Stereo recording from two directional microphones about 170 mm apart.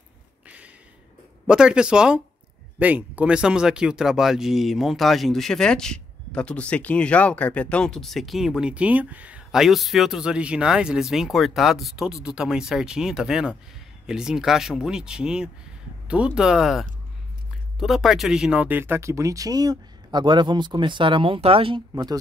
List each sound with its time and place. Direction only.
1.5 s speech: 5° right (ahead or behind); by 22.2 s 25° right (ahead or behind)